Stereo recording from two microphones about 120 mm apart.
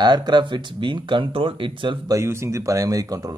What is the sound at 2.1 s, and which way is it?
Speech, 25° right (ahead or behind).